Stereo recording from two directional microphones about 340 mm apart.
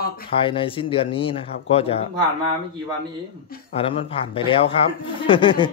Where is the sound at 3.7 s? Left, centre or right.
Centre.